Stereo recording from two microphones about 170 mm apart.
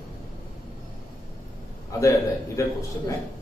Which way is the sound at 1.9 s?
20° left (ahead or behind).